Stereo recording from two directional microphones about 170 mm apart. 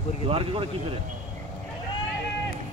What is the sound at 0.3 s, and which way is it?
Speech, 35° right (ahead or behind).